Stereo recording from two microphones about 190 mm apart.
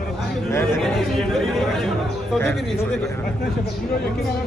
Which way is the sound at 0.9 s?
Centre (ahead or behind).